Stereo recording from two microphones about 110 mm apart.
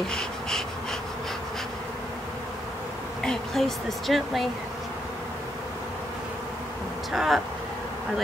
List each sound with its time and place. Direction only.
0.1 s wheeze: 5° left (ahead or behind)
3.2 s speech: 5° left (ahead or behind)
7.1 s speech: centre (ahead or behind)